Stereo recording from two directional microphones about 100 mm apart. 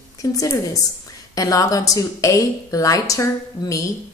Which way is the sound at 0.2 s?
35° left (ahead or behind).